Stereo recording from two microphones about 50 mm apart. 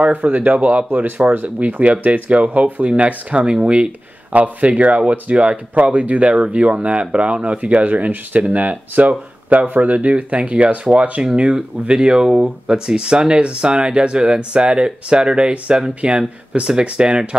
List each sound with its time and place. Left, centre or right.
0.1 s speech: right